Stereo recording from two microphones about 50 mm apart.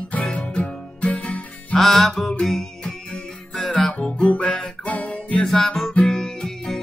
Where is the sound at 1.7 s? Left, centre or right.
Centre; by 5.4 s left.